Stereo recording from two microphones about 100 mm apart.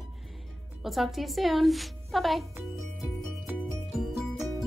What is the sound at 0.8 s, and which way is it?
A woman's voice, centre (ahead or behind).